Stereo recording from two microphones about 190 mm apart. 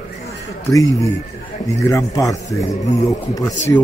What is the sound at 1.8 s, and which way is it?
Speech, 20° left (ahead or behind).